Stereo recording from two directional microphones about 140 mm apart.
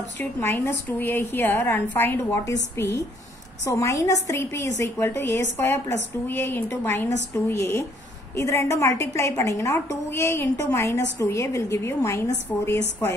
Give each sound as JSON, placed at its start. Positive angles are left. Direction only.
{"t": 0.2, "sound": "a woman's voice", "side_deg": 20}